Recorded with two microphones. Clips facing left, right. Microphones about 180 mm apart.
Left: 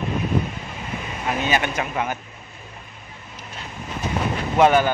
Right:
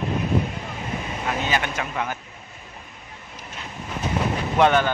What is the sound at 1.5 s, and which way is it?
Speech, 20° left (ahead or behind).